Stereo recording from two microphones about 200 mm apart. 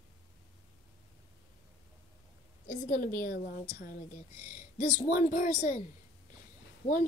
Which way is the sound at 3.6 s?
40° left (ahead or behind).